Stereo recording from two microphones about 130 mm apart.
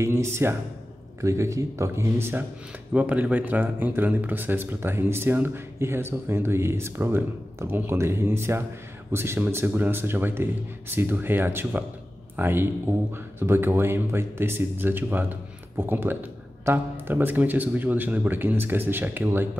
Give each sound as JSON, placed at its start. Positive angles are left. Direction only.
{"t": 0.0, "sound": "speech", "side_deg": -20}